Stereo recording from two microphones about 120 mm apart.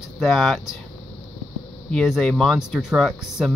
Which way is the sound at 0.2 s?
Centre (ahead or behind).